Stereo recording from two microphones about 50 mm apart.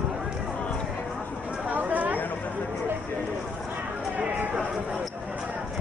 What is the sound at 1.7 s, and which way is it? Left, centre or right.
Chatter, right.